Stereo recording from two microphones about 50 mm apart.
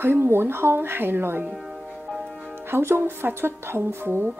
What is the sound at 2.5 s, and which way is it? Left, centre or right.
A woman's voice, right.